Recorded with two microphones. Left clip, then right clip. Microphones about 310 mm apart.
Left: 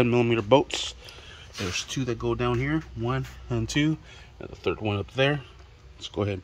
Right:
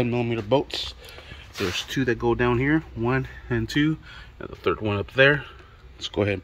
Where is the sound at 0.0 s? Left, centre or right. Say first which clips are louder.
Left 3 dB; centre.